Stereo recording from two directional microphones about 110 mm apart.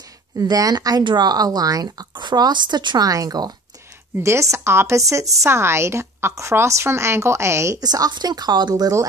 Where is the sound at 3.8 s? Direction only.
20° right (ahead or behind).